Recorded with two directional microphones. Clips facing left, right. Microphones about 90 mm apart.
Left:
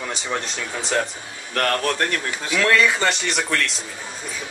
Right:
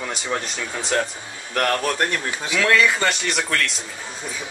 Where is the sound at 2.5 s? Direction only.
Centre (ahead or behind).